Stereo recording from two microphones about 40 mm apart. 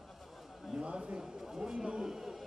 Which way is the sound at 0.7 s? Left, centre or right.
Right.